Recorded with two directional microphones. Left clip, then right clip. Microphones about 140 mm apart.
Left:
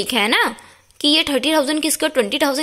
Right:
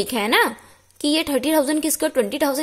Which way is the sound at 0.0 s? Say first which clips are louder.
Left 2 dB; centre (ahead or behind).